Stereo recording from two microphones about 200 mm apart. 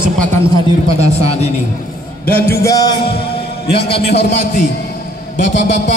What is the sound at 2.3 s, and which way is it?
Speech, 50° left (ahead or behind).